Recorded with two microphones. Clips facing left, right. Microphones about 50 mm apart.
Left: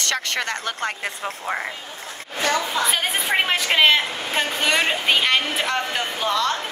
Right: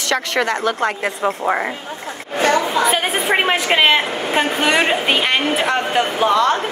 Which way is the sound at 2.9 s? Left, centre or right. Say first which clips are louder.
Right 5 dB; centre.